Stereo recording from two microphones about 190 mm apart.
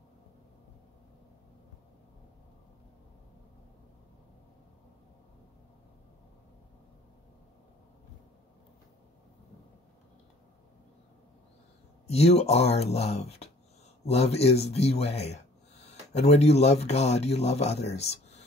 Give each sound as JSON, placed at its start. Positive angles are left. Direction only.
{"t": 12.1, "sound": "speech", "side_deg": 35}